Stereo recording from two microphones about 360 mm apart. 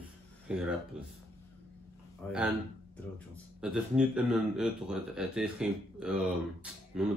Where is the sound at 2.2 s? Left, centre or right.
Centre.